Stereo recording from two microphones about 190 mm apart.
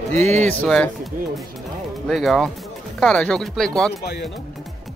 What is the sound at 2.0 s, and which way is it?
Speech, centre (ahead or behind).